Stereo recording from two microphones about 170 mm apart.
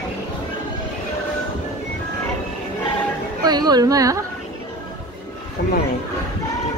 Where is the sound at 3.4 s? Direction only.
25° right (ahead or behind).